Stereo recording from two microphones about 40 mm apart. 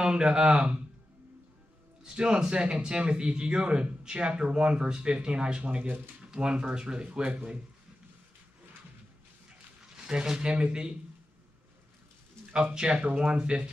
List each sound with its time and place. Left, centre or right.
0.0 s a man's voice: right
2.1 s a man's voice: right
10.0 s a man's voice: centre
12.7 s a man's voice: right